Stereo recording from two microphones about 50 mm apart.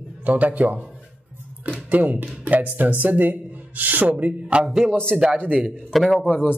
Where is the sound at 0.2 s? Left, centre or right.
Right.